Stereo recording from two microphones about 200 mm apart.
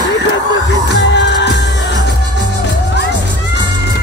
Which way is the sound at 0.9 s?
60° left (ahead or behind).